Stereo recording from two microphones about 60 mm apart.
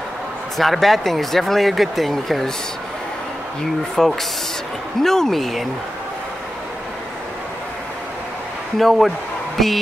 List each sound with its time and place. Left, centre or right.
0.6 s speech: centre
3.9 s speech: centre
8.7 s speech: centre